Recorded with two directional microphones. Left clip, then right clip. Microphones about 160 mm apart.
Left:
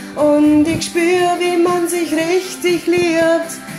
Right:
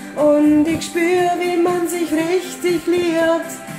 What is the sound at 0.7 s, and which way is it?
Female singing, 10° right (ahead or behind).